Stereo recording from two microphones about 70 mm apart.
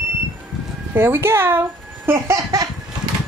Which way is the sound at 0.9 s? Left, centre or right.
Right.